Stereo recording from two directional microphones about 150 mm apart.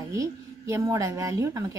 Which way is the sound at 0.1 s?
20° right (ahead or behind).